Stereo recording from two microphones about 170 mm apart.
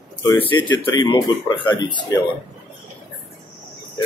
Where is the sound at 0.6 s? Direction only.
25° left (ahead or behind).